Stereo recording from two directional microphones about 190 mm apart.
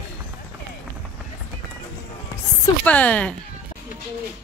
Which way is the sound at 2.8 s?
5° left (ahead or behind).